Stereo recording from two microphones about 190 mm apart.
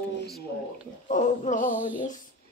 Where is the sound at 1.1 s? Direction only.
40° left (ahead or behind).